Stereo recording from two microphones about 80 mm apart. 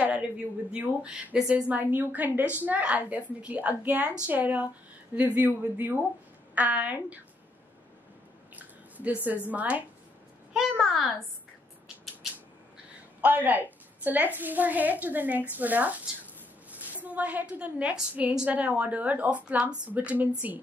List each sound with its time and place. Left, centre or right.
0.7 s a woman's voice: centre
8.5 s a sound: centre
9.5 s a woman's voice: centre
10.5 s a child's voice: centre
13.2 s a woman's voice: right
17.0 s speech: centre